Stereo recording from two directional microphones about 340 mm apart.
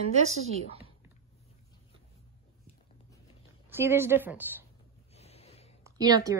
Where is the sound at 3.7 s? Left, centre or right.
Centre.